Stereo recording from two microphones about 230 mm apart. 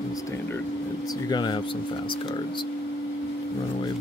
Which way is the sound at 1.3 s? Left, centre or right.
Centre.